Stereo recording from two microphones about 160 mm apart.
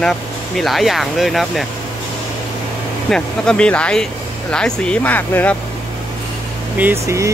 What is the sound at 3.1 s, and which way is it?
Speech, 5° left (ahead or behind).